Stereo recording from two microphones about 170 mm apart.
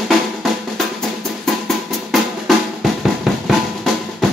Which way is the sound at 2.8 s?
Centre (ahead or behind).